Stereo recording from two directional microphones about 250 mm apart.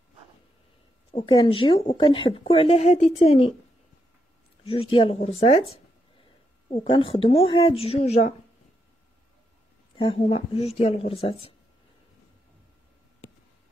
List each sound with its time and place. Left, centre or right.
1.1 s speech: left
4.6 s speech: left
9.9 s speech: left